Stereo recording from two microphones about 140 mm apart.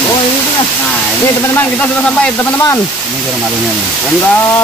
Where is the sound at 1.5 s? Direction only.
15° left (ahead or behind).